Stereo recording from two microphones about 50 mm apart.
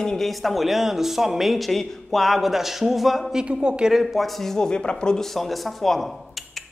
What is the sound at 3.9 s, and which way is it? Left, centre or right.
Speech, centre.